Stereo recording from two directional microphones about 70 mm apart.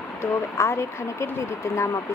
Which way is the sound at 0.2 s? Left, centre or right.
Left.